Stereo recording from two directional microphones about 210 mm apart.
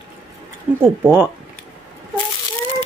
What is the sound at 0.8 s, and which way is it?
Speech, 10° right (ahead or behind).